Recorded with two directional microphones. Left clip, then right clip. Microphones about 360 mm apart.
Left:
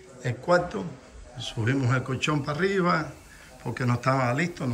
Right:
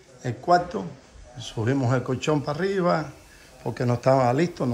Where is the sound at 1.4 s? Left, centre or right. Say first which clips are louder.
Right 2 dB; centre.